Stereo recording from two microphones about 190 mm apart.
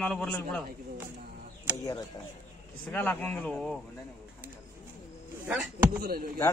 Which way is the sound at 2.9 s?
10° left (ahead or behind).